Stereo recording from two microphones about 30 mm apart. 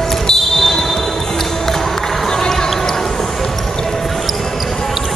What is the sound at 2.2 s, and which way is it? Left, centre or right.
Basketball bounce, centre.